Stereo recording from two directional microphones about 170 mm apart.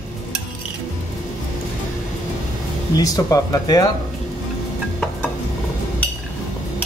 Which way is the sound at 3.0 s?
20° left (ahead or behind).